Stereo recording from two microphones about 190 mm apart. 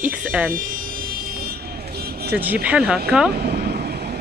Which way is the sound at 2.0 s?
55° right (ahead or behind).